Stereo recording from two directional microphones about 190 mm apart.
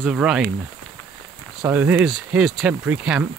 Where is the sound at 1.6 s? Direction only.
10° right (ahead or behind).